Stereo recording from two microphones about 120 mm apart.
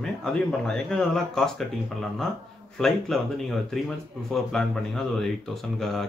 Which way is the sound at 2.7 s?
Centre (ahead or behind).